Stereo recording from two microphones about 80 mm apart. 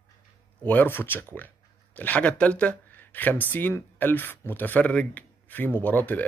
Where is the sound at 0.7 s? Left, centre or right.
Left.